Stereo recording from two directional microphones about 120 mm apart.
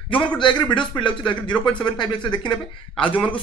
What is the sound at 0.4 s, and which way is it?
Speech, 40° left (ahead or behind).